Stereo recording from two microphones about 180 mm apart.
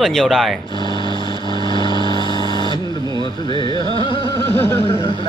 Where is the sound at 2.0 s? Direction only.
25° right (ahead or behind).